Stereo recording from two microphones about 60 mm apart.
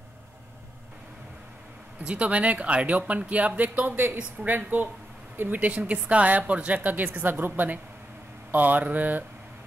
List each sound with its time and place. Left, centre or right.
2.0 s speech: right
3.9 s speech: right